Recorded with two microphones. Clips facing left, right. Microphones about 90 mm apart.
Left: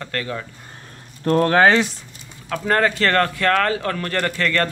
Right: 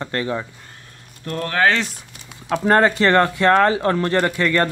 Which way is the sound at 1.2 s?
40° left (ahead or behind).